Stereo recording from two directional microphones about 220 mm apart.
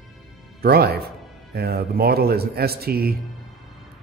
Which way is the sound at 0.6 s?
45° right (ahead or behind).